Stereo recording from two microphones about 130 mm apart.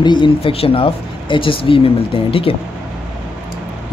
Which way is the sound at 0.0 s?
35° left (ahead or behind).